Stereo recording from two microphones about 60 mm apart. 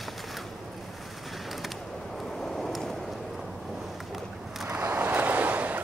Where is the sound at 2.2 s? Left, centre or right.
Centre.